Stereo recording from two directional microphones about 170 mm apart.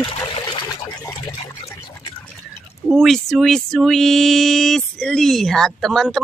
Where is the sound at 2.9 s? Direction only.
Centre (ahead or behind).